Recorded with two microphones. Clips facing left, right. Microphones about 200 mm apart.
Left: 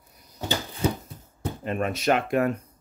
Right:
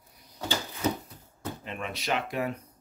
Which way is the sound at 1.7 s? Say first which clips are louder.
Left 9 dB; 50° left (ahead or behind).